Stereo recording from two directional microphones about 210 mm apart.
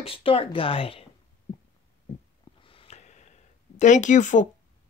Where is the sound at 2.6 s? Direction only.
25° left (ahead or behind).